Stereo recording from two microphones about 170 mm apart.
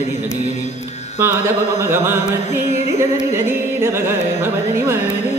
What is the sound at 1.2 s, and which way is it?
Carnatic music, 15° right (ahead or behind).